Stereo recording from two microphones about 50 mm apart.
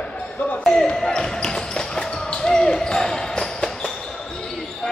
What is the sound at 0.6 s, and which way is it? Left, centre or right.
Speech, centre.